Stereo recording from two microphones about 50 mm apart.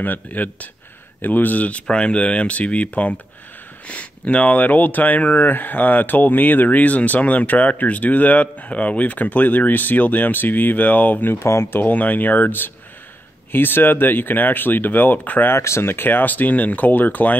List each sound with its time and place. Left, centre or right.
0.0 s speech: left
15.5 s speech: left